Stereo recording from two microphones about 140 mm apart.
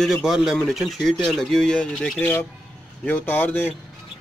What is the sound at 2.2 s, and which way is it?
Speech, 15° left (ahead or behind).